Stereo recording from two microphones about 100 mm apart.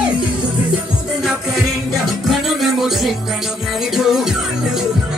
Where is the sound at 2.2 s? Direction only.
Centre (ahead or behind).